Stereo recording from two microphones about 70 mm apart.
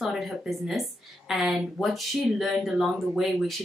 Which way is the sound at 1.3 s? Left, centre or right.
Centre.